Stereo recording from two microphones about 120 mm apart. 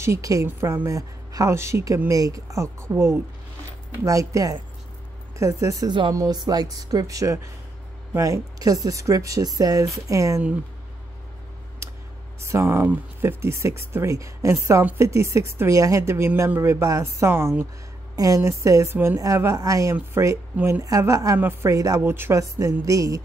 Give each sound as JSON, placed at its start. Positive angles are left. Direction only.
{"t": 0.0, "sound": "speech", "side_deg": -25}
{"t": 11.8, "sound": "a sound", "side_deg": -25}
{"t": 12.4, "sound": "speech", "side_deg": -25}
{"t": 20.5, "sound": "speech", "side_deg": -15}
{"t": 20.8, "sound": "speech", "side_deg": -25}